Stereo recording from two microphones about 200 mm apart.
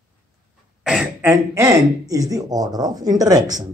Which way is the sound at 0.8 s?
5° right (ahead or behind).